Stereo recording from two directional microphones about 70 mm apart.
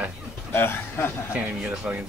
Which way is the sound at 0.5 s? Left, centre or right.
Left.